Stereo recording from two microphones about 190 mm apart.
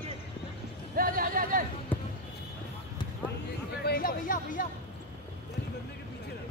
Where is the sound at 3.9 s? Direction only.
50° left (ahead or behind).